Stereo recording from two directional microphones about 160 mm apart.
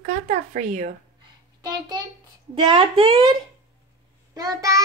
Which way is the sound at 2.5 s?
30° right (ahead or behind).